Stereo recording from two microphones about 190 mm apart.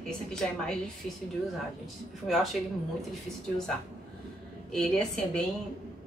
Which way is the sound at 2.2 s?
Centre (ahead or behind).